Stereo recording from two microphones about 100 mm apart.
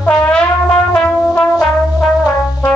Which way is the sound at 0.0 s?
15° left (ahead or behind).